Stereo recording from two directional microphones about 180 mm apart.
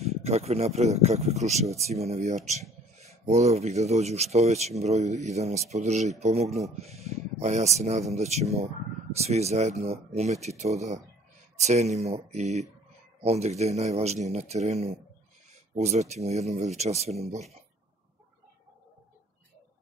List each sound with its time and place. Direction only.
0.0 s speech: 35° right (ahead or behind)